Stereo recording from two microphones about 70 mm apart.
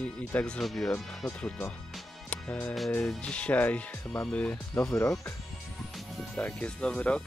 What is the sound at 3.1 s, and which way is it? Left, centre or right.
Speech, centre.